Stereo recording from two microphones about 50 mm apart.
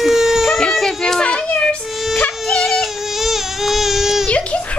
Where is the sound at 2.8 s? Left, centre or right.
Centre.